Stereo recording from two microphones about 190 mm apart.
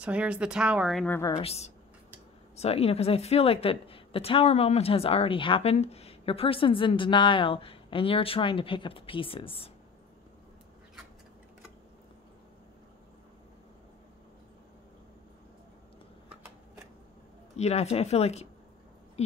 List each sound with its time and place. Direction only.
0.0 s speech: 5° right (ahead or behind)
1.0 s a woman's voice: 10° left (ahead or behind)
1.3 s a woman's voice: 30° left (ahead or behind)
17.6 s speech: 35° left (ahead or behind)
19.2 s a sound: 35° left (ahead or behind)